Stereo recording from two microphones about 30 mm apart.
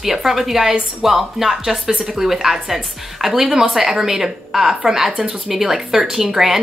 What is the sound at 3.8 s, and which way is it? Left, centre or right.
A woman's voice, right.